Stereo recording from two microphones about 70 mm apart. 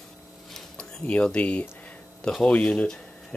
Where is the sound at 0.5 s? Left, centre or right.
Centre.